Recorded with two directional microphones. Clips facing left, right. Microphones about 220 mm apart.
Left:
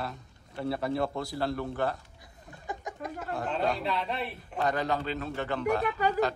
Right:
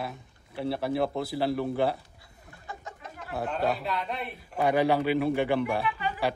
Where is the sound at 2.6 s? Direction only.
15° left (ahead or behind).